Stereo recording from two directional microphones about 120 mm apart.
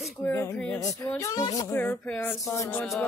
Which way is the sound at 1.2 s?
30° left (ahead or behind).